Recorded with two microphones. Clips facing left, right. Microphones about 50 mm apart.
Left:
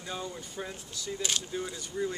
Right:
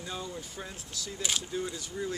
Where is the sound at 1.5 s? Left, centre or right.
Centre.